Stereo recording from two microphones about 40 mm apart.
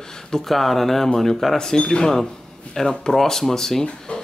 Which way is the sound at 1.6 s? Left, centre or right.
Centre.